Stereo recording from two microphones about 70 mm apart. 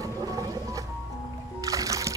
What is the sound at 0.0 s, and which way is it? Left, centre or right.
Music, right.